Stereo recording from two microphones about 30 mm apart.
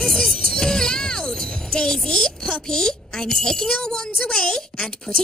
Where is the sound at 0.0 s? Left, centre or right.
Centre.